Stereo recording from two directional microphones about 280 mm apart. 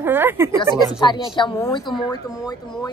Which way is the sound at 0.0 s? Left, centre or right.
Centre.